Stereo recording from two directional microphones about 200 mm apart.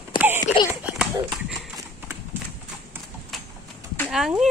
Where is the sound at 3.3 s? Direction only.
Centre (ahead or behind).